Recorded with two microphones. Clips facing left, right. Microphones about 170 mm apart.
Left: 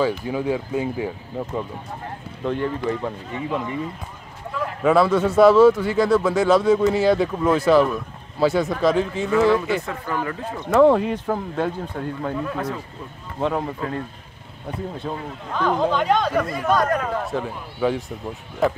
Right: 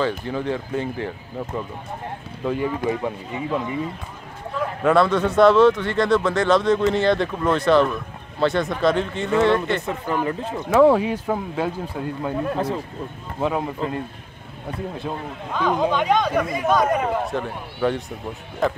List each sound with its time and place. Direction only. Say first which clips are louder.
0.0 s speech: left 2 dB; 10° left (ahead or behind)
2.4 s speech: right 1 dB; 5° right (ahead or behind)
3.4 s speech: right 1 dB; centre (ahead or behind)
4.8 s speech: left 1 dB; 5° left (ahead or behind)
10.1 s speech: right 3 dB; 15° right (ahead or behind)
10.7 s speech: even; 5° right (ahead or behind)
12.5 s speech: right 3 dB; 30° right (ahead or behind)
13.4 s speech: even; 5° right (ahead or behind)
15.0 s speech: even; centre (ahead or behind)